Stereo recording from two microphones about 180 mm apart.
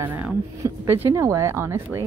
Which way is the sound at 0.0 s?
10° right (ahead or behind).